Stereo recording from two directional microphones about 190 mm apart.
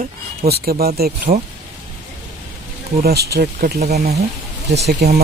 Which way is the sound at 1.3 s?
35° right (ahead or behind).